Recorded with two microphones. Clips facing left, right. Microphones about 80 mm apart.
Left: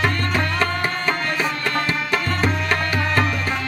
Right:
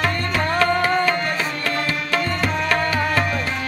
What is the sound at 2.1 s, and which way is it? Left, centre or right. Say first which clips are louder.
Music: right 1 dB; centre.